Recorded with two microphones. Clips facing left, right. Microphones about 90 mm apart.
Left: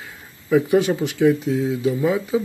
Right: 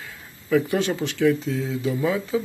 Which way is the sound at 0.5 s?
15° left (ahead or behind).